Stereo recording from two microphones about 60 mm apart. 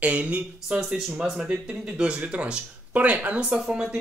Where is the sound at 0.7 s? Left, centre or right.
Centre.